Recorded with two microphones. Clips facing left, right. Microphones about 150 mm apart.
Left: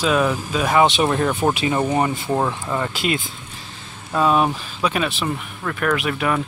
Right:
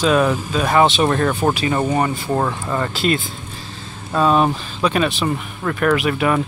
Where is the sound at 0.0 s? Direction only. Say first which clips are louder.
Right 3 dB; 5° left (ahead or behind).